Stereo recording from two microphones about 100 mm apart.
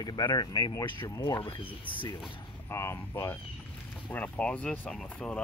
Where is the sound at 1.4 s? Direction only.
55° left (ahead or behind).